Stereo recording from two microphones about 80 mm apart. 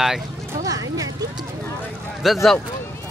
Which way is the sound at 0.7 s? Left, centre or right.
Right.